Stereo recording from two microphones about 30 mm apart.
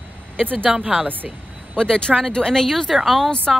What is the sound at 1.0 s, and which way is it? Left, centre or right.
Speech, right.